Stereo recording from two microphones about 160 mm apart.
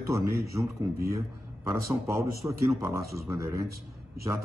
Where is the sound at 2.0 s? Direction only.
20° right (ahead or behind).